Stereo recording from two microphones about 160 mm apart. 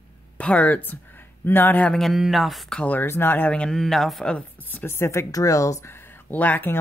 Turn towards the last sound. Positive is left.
turn(degrees=10)  # may be behind; listen again after turning